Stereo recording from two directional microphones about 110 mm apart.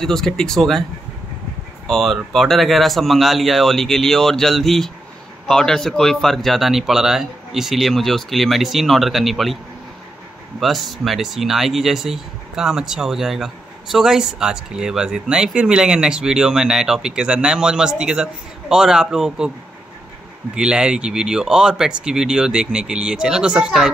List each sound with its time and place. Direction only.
0.0 s speech: 5° left (ahead or behind)
1.9 s speech: centre (ahead or behind)
10.6 s speech: centre (ahead or behind)
20.5 s speech: 10° right (ahead or behind)